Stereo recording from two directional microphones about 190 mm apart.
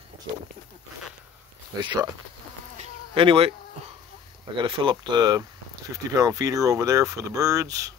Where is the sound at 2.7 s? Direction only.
25° right (ahead or behind).